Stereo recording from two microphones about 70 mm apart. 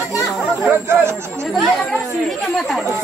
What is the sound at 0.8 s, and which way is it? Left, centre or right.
Speech, right.